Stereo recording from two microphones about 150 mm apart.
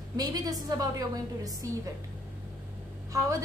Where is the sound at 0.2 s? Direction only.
25° right (ahead or behind).